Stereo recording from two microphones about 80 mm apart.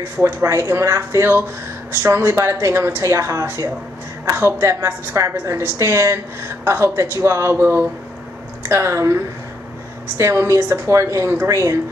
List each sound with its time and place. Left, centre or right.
0.2 s a woman's voice: right